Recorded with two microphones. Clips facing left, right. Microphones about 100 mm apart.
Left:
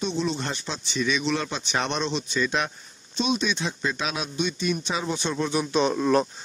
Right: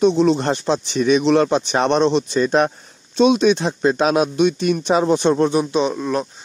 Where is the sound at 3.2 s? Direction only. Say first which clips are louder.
Right 12 dB; 80° right.